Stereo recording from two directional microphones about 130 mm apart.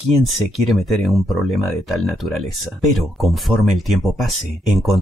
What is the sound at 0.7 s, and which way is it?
Speech, centre (ahead or behind).